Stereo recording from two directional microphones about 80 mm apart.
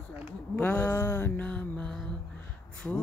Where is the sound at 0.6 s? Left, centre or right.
Left.